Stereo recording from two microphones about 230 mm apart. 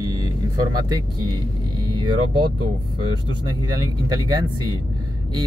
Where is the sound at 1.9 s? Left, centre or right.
Centre.